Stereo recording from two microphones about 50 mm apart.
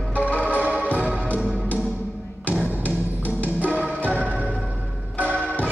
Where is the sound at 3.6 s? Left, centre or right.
Right.